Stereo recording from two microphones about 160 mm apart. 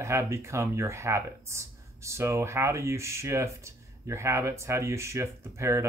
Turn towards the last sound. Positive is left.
turn(degrees=-15)  # may be behind; listen again after turning